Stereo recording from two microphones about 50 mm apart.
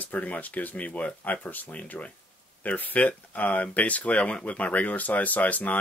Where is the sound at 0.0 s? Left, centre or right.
Left.